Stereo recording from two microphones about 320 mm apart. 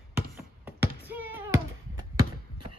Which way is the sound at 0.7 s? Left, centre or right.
Centre.